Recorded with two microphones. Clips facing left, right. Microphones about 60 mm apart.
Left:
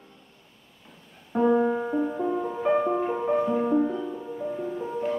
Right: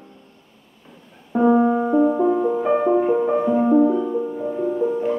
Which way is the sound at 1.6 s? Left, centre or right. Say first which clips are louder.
Right 7 dB; centre.